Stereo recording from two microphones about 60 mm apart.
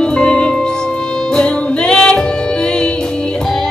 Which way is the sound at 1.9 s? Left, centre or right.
Centre.